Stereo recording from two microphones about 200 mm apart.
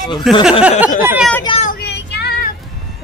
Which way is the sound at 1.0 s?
10° right (ahead or behind).